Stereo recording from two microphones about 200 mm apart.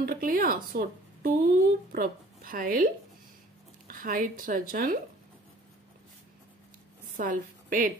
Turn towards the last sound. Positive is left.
turn(degrees=-40)  # may be behind; listen again after turning